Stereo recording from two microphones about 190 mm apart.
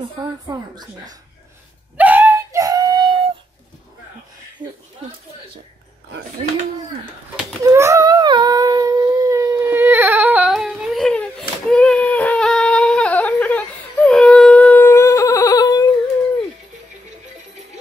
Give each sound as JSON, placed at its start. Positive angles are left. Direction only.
{"t": 0.0, "sound": "speech", "side_deg": -25}
{"t": 2.0, "sound": "a sound", "side_deg": -10}
{"t": 7.6, "sound": "humming", "side_deg": -15}